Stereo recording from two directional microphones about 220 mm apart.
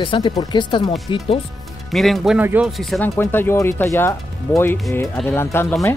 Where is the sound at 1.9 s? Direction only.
Centre (ahead or behind).